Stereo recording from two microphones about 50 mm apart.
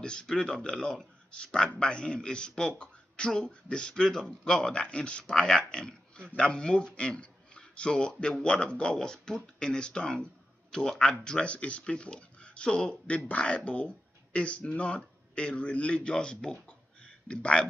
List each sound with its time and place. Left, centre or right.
0.0 s speech: centre
11.2 s speech: left